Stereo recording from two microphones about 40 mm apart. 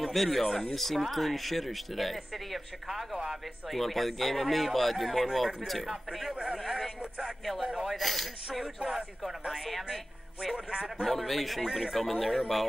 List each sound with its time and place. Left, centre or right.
0.0 s speech: centre
6.3 s speech: right
6.6 s speech: centre
7.0 s speech: right
7.8 s speech: centre
11.0 s speech: centre